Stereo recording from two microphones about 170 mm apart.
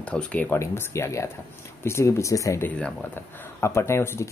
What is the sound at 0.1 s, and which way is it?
Speech, 5° left (ahead or behind).